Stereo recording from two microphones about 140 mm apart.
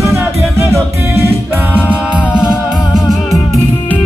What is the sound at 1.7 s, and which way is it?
A capella, 10° right (ahead or behind).